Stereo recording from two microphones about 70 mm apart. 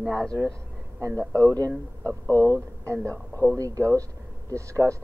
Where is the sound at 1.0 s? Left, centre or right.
Right.